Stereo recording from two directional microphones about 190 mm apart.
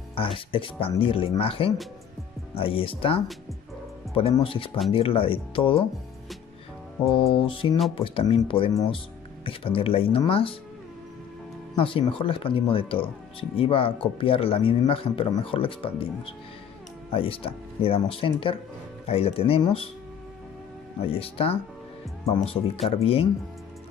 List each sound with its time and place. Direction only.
0.1 s speech: 30° left (ahead or behind)
7.1 s speech: 30° left (ahead or behind)
11.7 s speech: 25° left (ahead or behind)
21.0 s speech: 30° left (ahead or behind)